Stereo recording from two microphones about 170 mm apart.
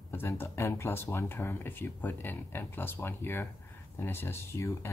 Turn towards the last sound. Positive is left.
turn(degrees=15)  # may be behind; listen again after turning